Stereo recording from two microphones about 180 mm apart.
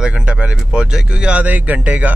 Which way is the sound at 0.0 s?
5° right (ahead or behind).